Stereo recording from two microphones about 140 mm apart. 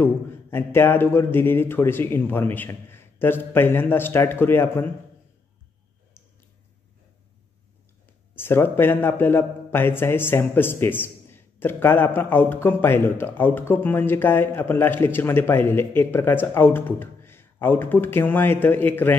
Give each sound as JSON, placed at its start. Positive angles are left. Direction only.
{"t": 0.0, "sound": "a man's voice", "side_deg": 15}
{"t": 8.4, "sound": "a man's voice", "side_deg": 15}